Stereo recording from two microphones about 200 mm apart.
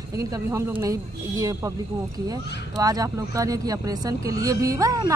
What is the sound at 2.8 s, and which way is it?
Speech, 20° right (ahead or behind).